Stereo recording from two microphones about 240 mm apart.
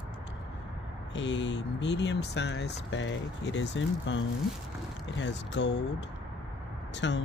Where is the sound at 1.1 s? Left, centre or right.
Left.